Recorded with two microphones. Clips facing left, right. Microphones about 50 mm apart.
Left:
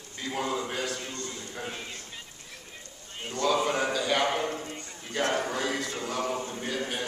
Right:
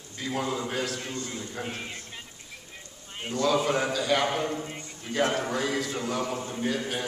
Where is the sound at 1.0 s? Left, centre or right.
Centre.